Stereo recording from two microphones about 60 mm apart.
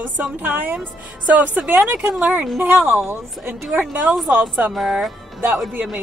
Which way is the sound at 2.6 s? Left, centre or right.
Right.